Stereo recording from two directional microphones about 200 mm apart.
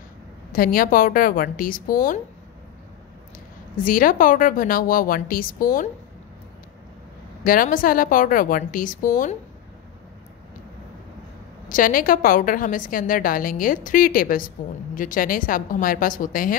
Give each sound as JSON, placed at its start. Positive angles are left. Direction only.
{"t": 0.5, "sound": "a woman's voice", "side_deg": 45}
{"t": 3.8, "sound": "a woman's voice", "side_deg": 45}
{"t": 7.4, "sound": "a woman's voice", "side_deg": 45}
{"t": 11.7, "sound": "a woman's voice", "side_deg": 45}